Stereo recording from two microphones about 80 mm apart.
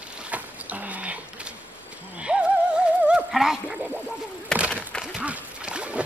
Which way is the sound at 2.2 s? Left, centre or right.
Centre.